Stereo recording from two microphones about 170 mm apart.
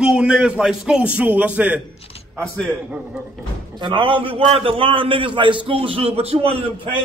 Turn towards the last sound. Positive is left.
turn(degrees=-35)  # may be behind; listen again after turning